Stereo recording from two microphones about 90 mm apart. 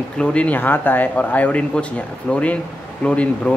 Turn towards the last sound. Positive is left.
turn(degrees=10)  # may be behind; listen again after turning